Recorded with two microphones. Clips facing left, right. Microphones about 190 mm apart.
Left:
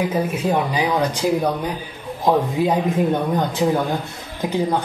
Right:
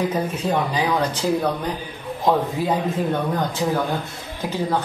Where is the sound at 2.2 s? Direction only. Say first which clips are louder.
Left 2 dB; 15° left (ahead or behind).